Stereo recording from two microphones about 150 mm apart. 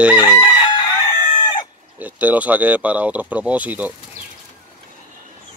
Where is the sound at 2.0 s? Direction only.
10° right (ahead or behind).